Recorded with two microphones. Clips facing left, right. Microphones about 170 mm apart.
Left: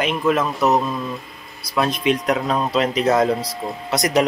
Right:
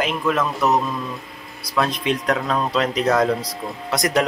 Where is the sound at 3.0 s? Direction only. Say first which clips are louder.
Left 1 dB; 25° left (ahead or behind).